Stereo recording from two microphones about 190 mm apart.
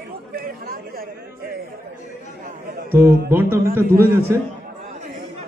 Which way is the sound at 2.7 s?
50° right (ahead or behind).